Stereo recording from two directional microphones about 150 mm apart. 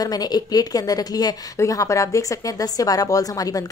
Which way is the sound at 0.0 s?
25° left (ahead or behind).